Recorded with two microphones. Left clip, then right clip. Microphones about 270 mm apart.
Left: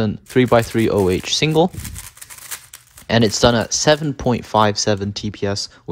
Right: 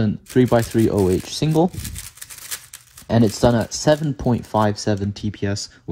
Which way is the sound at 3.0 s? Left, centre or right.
Right.